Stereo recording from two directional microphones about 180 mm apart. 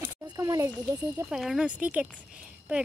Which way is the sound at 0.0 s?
15° right (ahead or behind).